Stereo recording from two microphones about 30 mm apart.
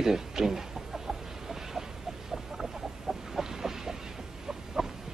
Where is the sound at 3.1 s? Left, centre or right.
Centre.